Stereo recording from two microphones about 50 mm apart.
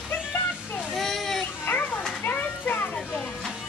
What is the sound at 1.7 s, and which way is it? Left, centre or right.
Children playing, left.